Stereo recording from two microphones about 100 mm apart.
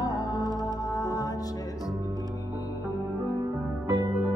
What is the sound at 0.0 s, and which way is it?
Music, 40° left (ahead or behind).